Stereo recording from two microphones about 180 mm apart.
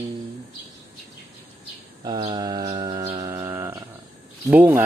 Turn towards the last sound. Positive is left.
turn(degrees=-15)  # may be behind; listen again after turning